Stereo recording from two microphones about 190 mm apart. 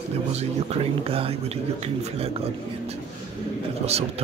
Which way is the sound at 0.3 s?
35° right (ahead or behind).